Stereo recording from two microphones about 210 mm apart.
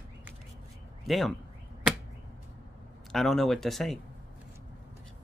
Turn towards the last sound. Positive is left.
turn(degrees=0)  # may be behind; listen again after turning